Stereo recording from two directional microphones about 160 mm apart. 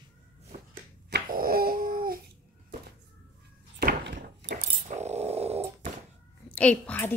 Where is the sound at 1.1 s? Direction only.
75° right (ahead or behind).